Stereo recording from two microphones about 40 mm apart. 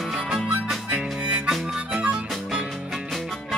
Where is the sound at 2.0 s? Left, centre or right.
Right.